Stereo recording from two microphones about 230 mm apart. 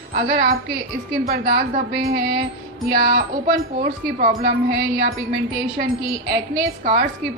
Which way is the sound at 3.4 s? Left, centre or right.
Right.